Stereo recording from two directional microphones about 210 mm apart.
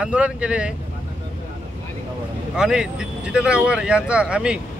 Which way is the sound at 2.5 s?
5° right (ahead or behind).